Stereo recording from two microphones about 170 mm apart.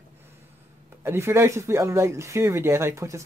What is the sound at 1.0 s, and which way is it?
Speech, 15° right (ahead or behind).